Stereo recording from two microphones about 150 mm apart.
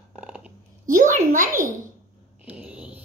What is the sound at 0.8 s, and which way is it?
Speech, 60° right (ahead or behind).